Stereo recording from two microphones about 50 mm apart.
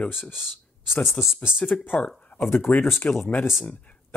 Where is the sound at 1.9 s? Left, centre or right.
Centre.